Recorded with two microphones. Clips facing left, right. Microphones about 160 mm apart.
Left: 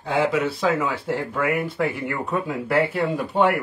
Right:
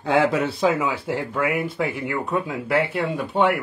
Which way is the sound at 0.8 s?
5° right (ahead or behind).